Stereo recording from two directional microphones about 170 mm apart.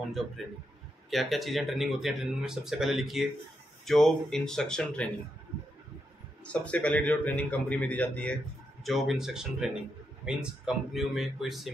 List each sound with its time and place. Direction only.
0.2 s speech: centre (ahead or behind)
6.4 s speech: 5° left (ahead or behind)